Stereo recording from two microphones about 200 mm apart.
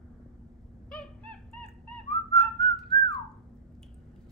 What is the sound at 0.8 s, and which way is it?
Cat, 5° left (ahead or behind).